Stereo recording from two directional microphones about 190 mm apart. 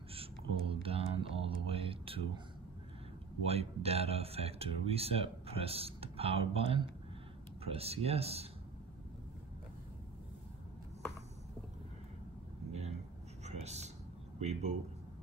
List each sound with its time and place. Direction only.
0.1 s a sound: 30° right (ahead or behind)
3.4 s speech: 30° right (ahead or behind)
13.4 s whispering: 35° right (ahead or behind)
14.4 s speech: 35° right (ahead or behind)